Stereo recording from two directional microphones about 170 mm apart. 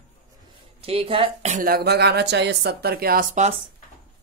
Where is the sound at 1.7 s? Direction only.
70° right (ahead or behind).